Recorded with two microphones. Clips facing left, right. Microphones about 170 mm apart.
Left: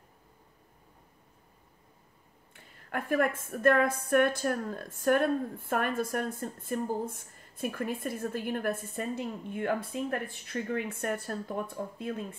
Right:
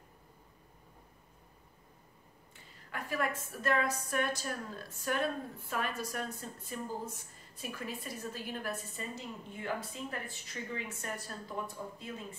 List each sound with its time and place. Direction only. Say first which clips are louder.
2.5 s a woman's voice: left 8 dB; 55° left (ahead or behind)